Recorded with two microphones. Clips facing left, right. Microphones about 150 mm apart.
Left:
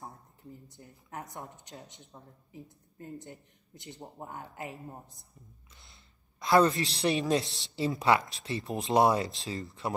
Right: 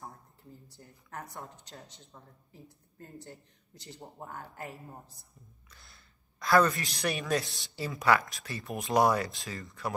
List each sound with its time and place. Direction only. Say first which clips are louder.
0.0 s speech: left 1 dB; 20° left (ahead or behind)